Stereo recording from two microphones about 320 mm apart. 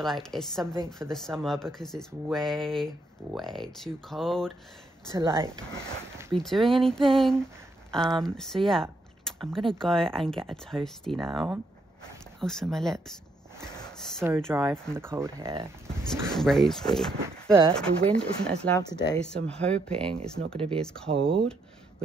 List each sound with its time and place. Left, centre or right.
0.0 s speech: centre
16.3 s speech: centre
20.1 s speech: centre
20.8 s speech: centre
21.1 s speech: centre